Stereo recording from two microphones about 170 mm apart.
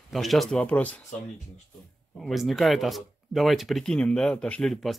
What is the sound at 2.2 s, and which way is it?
Speech, centre (ahead or behind).